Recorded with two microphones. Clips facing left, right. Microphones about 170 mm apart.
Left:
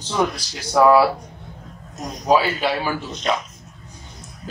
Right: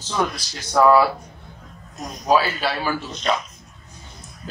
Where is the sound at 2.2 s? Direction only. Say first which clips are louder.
Left 1 dB; 15° left (ahead or behind).